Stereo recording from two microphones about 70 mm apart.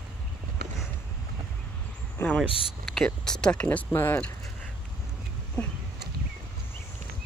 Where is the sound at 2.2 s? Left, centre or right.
Centre.